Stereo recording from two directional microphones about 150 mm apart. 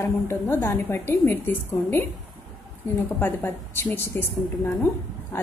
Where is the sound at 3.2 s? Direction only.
15° left (ahead or behind).